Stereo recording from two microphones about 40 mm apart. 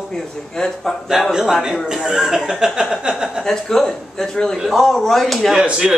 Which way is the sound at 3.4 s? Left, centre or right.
Centre.